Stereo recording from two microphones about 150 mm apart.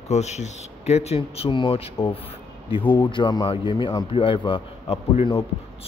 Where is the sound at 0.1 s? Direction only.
50° left (ahead or behind).